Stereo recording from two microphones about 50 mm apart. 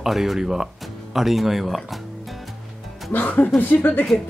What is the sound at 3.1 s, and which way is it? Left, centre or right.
Speech, left.